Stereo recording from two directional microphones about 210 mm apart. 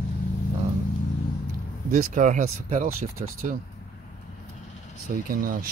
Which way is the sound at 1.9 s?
35° right (ahead or behind).